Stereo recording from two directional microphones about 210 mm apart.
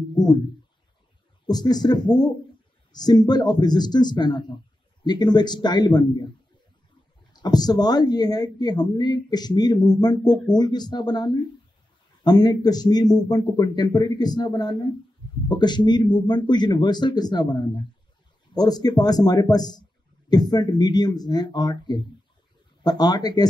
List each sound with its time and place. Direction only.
0.1 s a sound: 20° left (ahead or behind)
1.4 s speech: 20° left (ahead or behind)
7.4 s speech: 20° left (ahead or behind)